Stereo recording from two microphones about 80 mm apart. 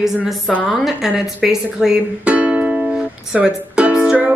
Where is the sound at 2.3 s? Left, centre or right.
Centre.